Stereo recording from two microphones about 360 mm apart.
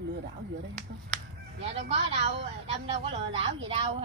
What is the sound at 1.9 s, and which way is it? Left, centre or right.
A woman's voice, centre.